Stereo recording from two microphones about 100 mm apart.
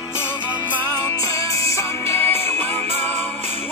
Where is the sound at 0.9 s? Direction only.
35° left (ahead or behind).